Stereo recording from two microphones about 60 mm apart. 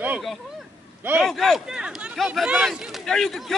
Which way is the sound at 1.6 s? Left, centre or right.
Centre.